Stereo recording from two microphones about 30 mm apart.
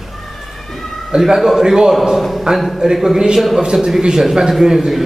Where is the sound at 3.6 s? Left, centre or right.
Right.